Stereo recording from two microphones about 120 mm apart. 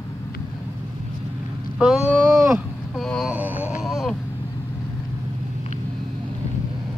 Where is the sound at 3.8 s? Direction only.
Centre (ahead or behind).